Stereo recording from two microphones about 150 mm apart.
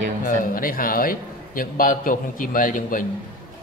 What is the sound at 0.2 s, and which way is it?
A man's voice, 70° left (ahead or behind).